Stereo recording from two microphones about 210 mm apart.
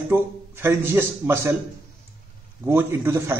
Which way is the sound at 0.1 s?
10° right (ahead or behind).